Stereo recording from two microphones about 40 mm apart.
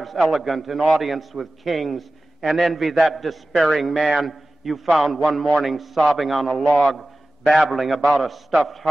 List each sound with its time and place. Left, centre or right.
0.0 s a man's voice: centre